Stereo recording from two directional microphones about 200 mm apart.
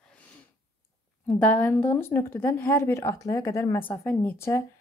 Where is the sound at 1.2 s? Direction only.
10° left (ahead or behind).